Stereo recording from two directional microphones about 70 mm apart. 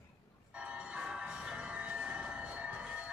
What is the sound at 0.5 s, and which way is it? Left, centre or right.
Train, centre.